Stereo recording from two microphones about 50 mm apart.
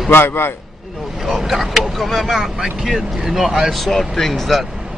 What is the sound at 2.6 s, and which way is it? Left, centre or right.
Speech, centre.